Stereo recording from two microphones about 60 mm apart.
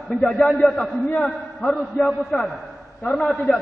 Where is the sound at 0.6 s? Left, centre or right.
Centre.